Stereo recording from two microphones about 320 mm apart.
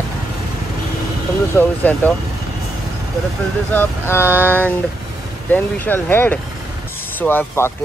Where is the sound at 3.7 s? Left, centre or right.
Centre.